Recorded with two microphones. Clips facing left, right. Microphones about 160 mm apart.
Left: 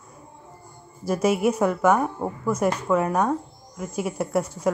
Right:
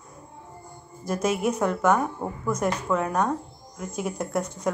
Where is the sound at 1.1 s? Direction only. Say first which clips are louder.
Left 4 dB; 10° left (ahead or behind).